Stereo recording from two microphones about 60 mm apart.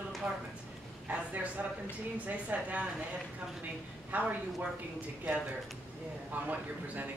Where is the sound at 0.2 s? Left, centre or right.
Centre.